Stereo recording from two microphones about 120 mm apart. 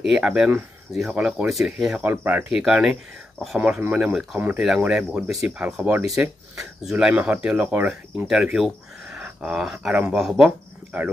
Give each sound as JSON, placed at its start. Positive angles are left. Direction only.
{"t": 0.0, "sound": "speech", "side_deg": -5}